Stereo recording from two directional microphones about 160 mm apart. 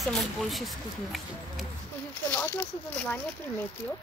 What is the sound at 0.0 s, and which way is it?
Speech, centre (ahead or behind).